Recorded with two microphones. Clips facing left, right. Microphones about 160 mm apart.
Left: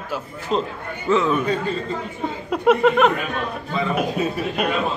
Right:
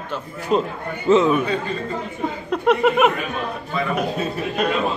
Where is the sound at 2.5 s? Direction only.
Centre (ahead or behind).